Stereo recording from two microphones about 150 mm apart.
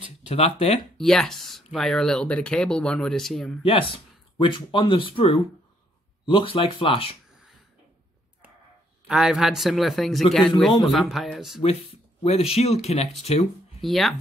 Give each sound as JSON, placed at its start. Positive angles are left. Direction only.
{"t": 0.3, "sound": "speech", "side_deg": 45}
{"t": 0.9, "sound": "speech", "side_deg": 5}
{"t": 3.6, "sound": "speech", "side_deg": 40}
{"t": 9.0, "sound": "speech", "side_deg": -5}
{"t": 12.2, "sound": "speech", "side_deg": 40}
{"t": 13.7, "sound": "speech", "side_deg": 0}